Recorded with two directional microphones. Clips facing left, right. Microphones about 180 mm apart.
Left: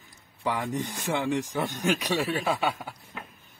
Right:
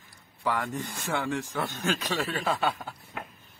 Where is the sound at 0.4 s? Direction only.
20° left (ahead or behind).